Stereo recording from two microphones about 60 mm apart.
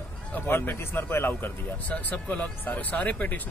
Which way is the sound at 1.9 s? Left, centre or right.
Left.